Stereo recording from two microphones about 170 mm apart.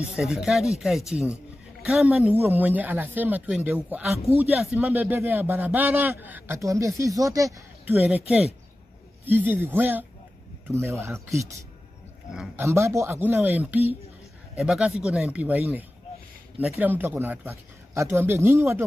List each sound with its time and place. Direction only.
0.1 s a man's voice: centre (ahead or behind)
9.2 s a man's voice: 10° right (ahead or behind)
12.3 s speech: 5° right (ahead or behind)
12.6 s a man's voice: 15° right (ahead or behind)
16.8 s a man's voice: 10° right (ahead or behind)